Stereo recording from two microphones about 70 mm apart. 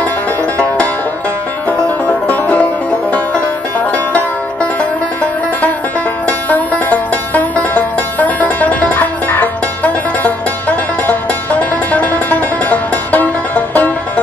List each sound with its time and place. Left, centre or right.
1.7 s music: left
3.9 s banjo: left
6.2 s music: left